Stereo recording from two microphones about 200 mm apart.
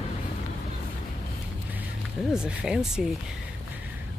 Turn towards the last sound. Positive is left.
turn(degrees=-5)  # may be behind; listen again after turning